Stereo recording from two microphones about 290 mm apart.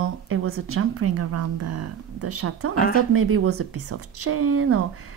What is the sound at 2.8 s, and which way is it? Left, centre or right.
Speech, left.